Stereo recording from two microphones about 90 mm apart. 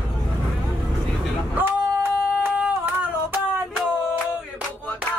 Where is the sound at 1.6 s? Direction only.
20° right (ahead or behind).